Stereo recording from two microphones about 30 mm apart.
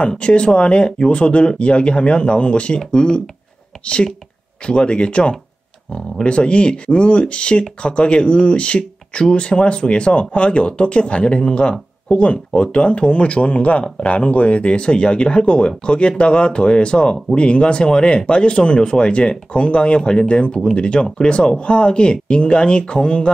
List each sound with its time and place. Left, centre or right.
0.2 s speech: left
13.8 s speech: left